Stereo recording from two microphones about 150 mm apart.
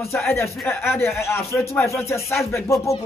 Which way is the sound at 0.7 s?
15° left (ahead or behind).